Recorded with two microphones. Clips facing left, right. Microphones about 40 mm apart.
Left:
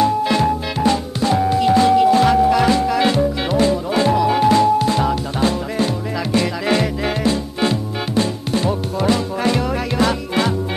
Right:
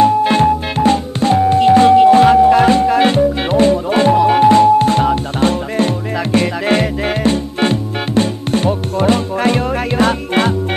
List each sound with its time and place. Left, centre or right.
0.0 s music: right